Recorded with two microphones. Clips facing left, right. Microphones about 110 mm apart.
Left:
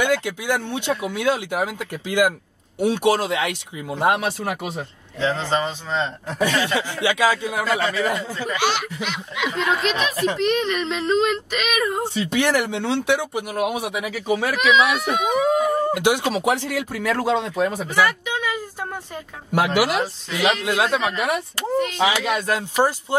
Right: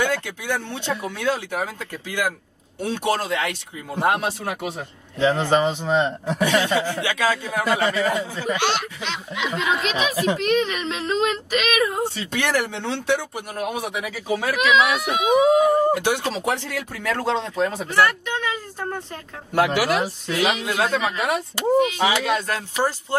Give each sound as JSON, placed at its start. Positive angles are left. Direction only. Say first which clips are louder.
{"t": 0.0, "sound": "speech", "louder": "left 3 dB", "side_deg": 15}
{"t": 5.2, "sound": "a man's voice", "louder": "right 3 dB", "side_deg": -15}
{"t": 7.0, "sound": "speech", "louder": "left 3 dB", "side_deg": 15}
{"t": 7.7, "sound": "a man's voice", "louder": "right 2 dB", "side_deg": -15}
{"t": 8.5, "sound": "speech", "louder": "left 4 dB", "side_deg": 5}
{"t": 12.3, "sound": "speech", "louder": "left 5 dB", "side_deg": 15}
{"t": 15.9, "sound": "speech", "louder": "left 2 dB", "side_deg": 15}
{"t": 20.2, "sound": "speech", "louder": "left 1 dB", "side_deg": 0}
{"t": 20.6, "sound": "speech", "louder": "left 2 dB", "side_deg": 15}
{"t": 21.7, "sound": "a man's voice", "louder": "right 3 dB", "side_deg": -5}
{"t": 22.3, "sound": "speech", "louder": "left 1 dB", "side_deg": 15}